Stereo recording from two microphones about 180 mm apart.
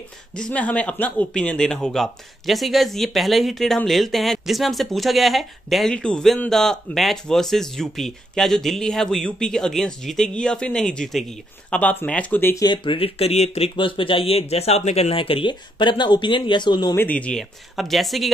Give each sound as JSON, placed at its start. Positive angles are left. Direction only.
{"t": 0.3, "sound": "speech", "side_deg": 5}
{"t": 12.6, "sound": "speech", "side_deg": 30}
{"t": 16.9, "sound": "speech", "side_deg": 10}